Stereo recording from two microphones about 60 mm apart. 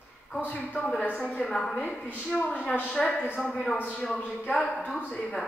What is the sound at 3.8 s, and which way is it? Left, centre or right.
Speech, left.